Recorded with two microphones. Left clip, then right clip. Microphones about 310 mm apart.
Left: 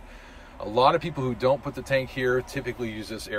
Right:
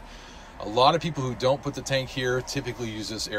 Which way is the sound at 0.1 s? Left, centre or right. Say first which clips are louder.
Right 2 dB; centre.